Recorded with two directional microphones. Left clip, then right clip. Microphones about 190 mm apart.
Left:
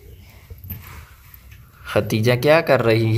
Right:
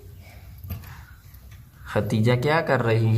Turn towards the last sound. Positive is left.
turn(degrees=20)  # may be behind; listen again after turning